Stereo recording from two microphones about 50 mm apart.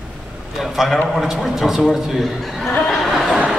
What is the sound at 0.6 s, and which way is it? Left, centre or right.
A man's voice, centre.